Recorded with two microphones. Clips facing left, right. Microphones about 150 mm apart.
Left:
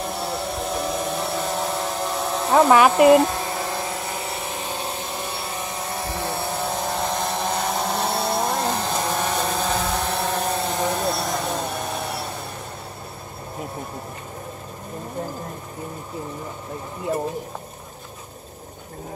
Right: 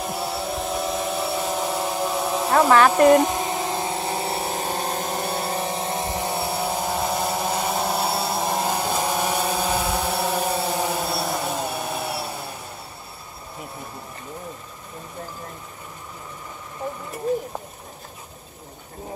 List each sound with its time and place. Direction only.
0.0 s vehicle: 5° right (ahead or behind)
2.7 s speech: 10° left (ahead or behind)
3.2 s vehicle: 20° right (ahead or behind); by 5.6 s 40° right (ahead or behind)
5.8 s vehicle: 25° right (ahead or behind); by 12.3 s 5° right (ahead or behind)